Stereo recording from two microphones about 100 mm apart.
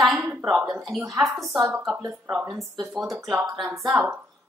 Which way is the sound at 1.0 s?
35° right (ahead or behind).